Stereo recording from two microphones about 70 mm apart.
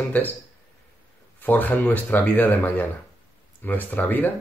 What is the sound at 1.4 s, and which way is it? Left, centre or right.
Speech, left.